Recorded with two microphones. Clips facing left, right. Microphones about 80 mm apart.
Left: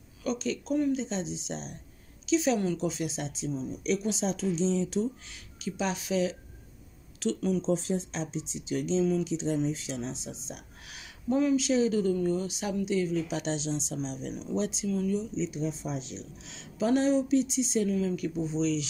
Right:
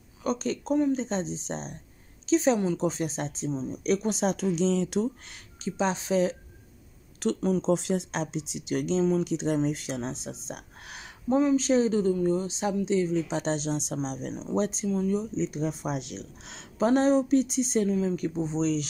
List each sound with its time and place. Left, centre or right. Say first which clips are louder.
0.2 s a woman's voice: right 2 dB; right
5.6 s speech: right 4 dB; right
7.3 s speech: right 3 dB; right
7.6 s speech: right 3 dB; right
10.5 s a sound: right 4 dB; right
11.5 s speech: right 2 dB; right
14.3 s speech: right 4 dB; right
14.9 s speech: right 2 dB; right
15.1 s speech: right 2 dB; right
16.5 s speech: right 3 dB; right
17.8 s speech: right 2 dB; right